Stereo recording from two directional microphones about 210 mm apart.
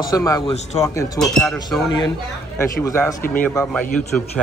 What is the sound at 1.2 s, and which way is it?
Speech, centre (ahead or behind).